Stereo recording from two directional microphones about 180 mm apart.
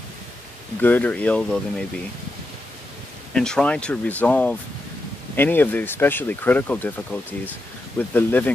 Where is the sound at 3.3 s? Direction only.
5° left (ahead or behind).